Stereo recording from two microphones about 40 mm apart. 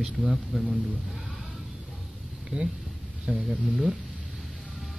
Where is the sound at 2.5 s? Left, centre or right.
Right.